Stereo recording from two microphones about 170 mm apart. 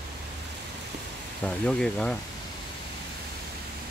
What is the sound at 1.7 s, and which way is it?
Speech, 5° left (ahead or behind).